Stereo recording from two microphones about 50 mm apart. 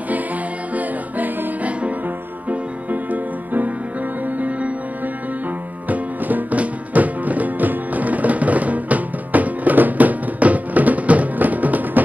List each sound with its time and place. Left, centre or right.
0.7 s music: right